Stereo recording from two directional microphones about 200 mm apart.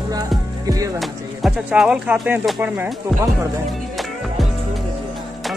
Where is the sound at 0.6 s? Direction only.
15° right (ahead or behind).